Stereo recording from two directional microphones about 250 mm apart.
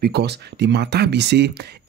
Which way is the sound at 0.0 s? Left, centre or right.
Right.